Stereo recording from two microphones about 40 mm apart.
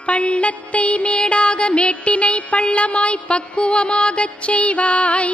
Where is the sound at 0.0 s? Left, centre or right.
Left.